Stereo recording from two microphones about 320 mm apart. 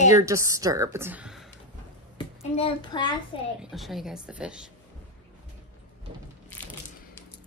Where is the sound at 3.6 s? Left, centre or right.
Centre.